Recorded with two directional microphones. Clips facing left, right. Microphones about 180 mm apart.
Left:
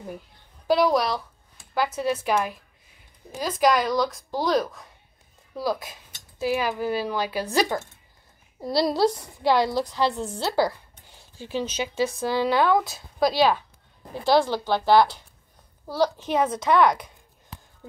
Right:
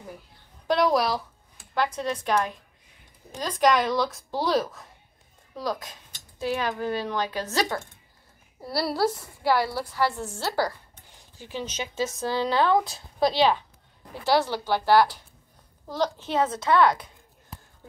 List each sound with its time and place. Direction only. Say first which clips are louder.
0.7 s a woman's voice: left 1 dB; centre (ahead or behind)
11.1 s a sound: left 5 dB; 15° right (ahead or behind)
11.5 s speech: left 4 dB; 15° left (ahead or behind)
15.9 s speech: left 3 dB; 15° left (ahead or behind)